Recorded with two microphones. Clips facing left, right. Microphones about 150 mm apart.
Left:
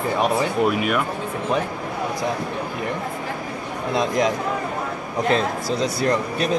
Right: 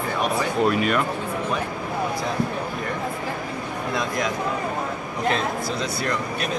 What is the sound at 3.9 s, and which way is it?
Speech, 30° left (ahead or behind).